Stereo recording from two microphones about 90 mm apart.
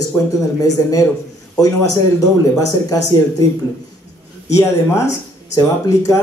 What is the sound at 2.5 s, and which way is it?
Speech, 40° left (ahead or behind).